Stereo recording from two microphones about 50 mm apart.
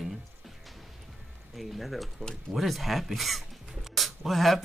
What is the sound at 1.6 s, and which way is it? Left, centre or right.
Speech, centre.